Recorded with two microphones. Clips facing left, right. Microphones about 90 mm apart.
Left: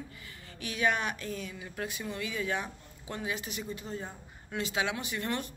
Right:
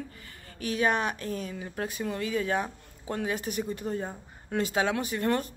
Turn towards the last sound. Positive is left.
turn(degrees=-40)  # may be behind; listen again after turning